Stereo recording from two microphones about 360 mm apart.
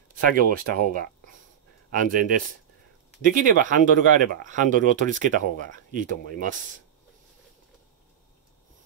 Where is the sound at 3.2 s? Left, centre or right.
Right.